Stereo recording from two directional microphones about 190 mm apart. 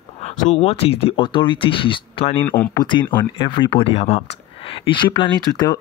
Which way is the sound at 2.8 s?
25° left (ahead or behind).